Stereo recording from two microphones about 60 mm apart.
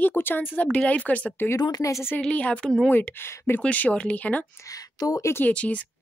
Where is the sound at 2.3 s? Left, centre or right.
Centre.